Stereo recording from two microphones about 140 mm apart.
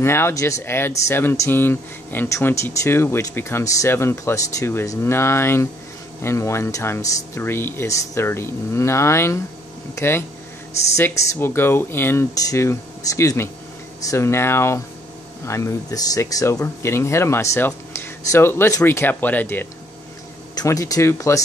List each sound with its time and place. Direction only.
0.0 s speech: 20° left (ahead or behind)